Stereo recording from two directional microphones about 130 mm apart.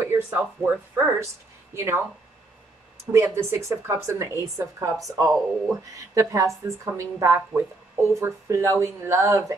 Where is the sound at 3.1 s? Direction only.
20° right (ahead or behind).